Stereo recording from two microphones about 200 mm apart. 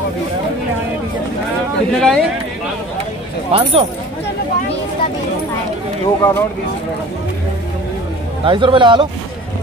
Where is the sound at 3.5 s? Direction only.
30° right (ahead or behind).